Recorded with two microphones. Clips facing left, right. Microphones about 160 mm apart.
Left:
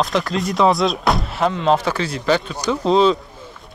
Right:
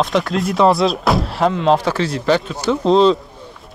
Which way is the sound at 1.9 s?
5° left (ahead or behind).